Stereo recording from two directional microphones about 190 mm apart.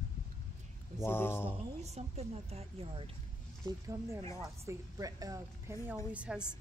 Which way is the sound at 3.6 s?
15° right (ahead or behind).